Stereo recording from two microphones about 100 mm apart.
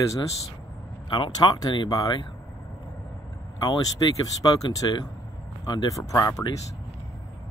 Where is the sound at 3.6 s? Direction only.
40° left (ahead or behind).